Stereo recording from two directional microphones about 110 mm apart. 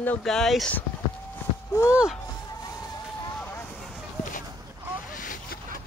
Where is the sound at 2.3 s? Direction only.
35° left (ahead or behind).